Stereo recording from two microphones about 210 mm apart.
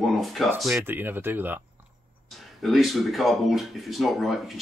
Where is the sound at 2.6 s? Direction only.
Centre (ahead or behind).